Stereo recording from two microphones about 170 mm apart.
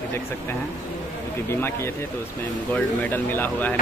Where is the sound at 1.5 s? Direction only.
15° left (ahead or behind).